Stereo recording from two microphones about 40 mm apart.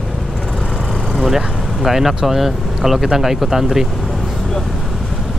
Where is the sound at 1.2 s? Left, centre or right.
Centre.